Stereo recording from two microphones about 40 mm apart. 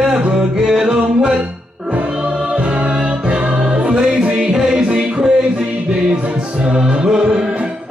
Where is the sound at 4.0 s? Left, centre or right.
Centre.